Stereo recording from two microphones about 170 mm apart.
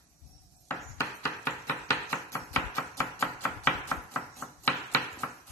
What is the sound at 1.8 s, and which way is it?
Chopping, 15° left (ahead or behind).